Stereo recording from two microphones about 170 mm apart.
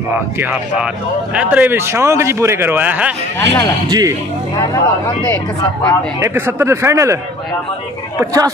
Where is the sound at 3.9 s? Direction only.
20° right (ahead or behind).